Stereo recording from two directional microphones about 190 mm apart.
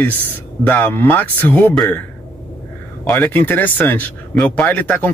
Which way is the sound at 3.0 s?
10° left (ahead or behind).